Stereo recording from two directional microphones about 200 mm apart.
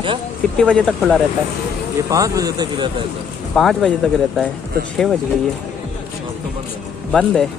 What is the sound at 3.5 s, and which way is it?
Speech, centre (ahead or behind).